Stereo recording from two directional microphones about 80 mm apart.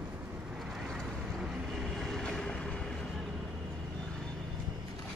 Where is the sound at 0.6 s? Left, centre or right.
Centre.